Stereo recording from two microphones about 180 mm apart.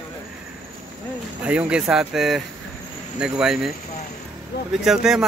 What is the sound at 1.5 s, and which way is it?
Speech, 5° right (ahead or behind).